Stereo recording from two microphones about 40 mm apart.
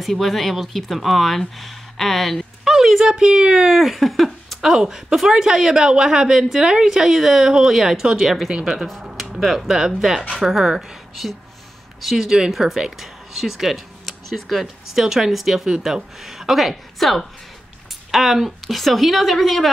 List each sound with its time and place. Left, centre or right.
0.0 s speech: centre
2.6 s speech: centre
8.5 s speech: centre
8.7 s speech: centre
12.2 s speech: centre